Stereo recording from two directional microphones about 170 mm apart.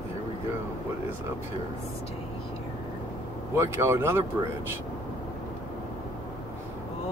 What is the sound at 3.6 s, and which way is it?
Speech, 15° right (ahead or behind).